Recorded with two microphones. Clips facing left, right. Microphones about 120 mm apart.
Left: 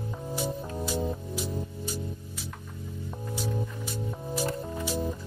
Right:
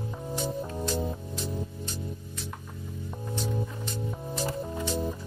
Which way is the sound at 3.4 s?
5° left (ahead or behind).